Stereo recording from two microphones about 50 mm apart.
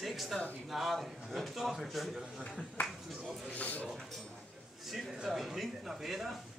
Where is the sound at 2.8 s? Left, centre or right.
Left.